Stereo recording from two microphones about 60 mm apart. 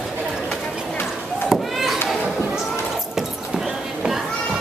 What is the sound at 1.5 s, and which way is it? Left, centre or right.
Chop, centre.